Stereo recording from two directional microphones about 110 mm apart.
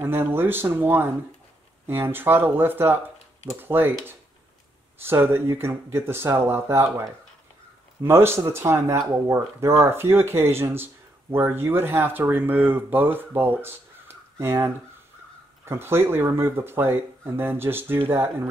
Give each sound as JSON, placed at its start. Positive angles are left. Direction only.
{"t": 0.0, "sound": "speech", "side_deg": -20}
{"t": 5.0, "sound": "speech", "side_deg": -20}